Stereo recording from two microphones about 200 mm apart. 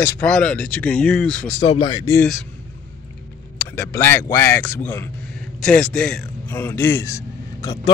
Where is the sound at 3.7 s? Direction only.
10° left (ahead or behind).